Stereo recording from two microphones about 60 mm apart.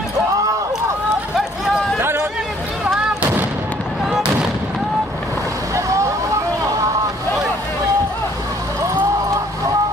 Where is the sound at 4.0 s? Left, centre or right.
Centre.